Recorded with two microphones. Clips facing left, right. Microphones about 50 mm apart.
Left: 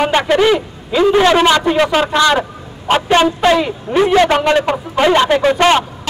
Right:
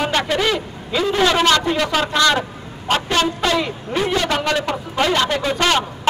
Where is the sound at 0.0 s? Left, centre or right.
Left.